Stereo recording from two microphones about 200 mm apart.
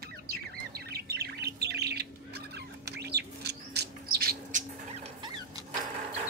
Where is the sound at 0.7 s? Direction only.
55° right (ahead or behind).